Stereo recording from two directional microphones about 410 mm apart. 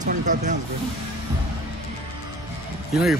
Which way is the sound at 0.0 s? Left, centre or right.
Centre.